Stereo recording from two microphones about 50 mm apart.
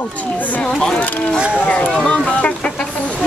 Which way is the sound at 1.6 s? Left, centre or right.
Left.